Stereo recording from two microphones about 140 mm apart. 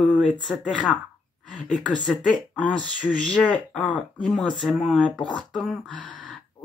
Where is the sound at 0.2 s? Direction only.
5° left (ahead or behind).